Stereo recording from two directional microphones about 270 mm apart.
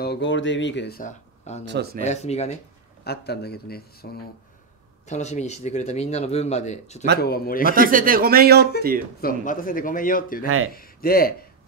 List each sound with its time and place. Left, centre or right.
0.0 s speech: left
1.6 s speech: right
2.0 s speech: left
3.0 s speech: left
5.0 s speech: left
7.7 s speech: right
9.2 s speech: left
10.4 s speech: right
10.7 s speech: left